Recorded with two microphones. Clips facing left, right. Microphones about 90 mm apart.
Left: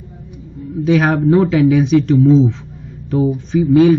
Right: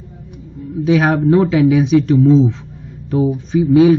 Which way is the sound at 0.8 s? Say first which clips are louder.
Even; centre (ahead or behind).